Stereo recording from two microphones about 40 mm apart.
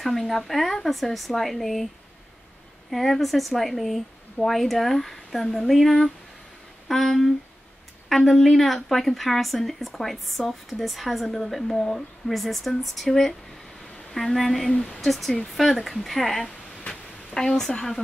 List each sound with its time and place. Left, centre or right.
0.0 s a woman's voice: centre
2.9 s a woman's voice: centre
11.2 s a woman's voice: centre
14.7 s speech: centre
15.0 s a woman's voice: centre
16.9 s speech: centre